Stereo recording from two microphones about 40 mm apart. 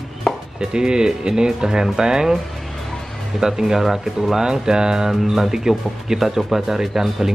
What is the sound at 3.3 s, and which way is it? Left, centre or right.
Speech, centre.